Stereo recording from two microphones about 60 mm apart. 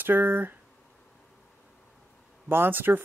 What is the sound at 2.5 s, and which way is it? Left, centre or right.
Speech, right.